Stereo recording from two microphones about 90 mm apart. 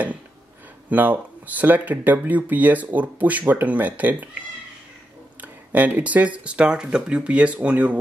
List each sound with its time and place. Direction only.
0.8 s speech: 20° right (ahead or behind)
5.4 s speech: 20° right (ahead or behind)